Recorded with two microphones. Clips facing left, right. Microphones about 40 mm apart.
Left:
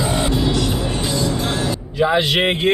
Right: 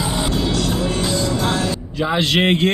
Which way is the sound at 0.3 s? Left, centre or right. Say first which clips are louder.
Left 1 dB; left.